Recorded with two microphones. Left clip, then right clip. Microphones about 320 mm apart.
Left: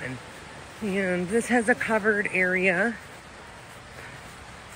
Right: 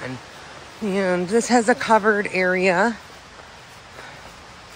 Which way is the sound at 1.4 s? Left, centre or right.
Centre.